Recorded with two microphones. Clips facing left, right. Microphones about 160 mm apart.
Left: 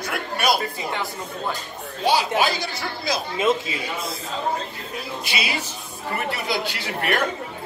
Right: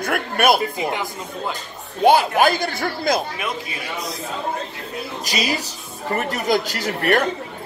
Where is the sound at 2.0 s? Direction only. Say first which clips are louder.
Right 6 dB; 50° right (ahead or behind).